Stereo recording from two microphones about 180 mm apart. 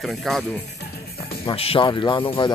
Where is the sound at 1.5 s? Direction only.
30° left (ahead or behind).